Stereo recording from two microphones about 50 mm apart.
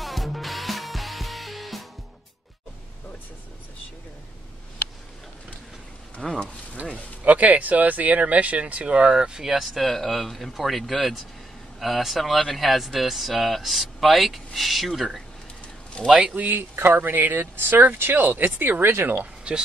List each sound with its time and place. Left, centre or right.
0.0 s music: centre
6.2 s speech: centre
7.2 s speech: right; by 15.2 s centre
16.1 s a man's voice: centre
16.3 s speech: right
19.1 s speech: centre